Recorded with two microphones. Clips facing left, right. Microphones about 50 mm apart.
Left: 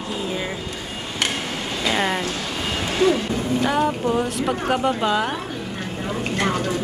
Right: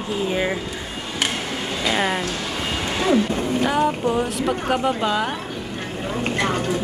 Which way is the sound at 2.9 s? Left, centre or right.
Centre.